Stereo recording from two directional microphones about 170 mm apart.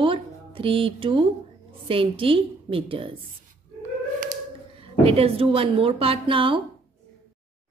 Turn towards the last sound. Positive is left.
turn(degrees=-30)  # may be behind; listen again after turning